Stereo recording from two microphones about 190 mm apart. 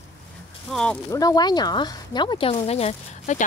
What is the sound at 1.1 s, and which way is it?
Speech, 20° left (ahead or behind).